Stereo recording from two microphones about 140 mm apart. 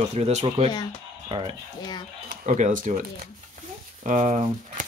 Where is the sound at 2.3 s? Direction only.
70° right (ahead or behind).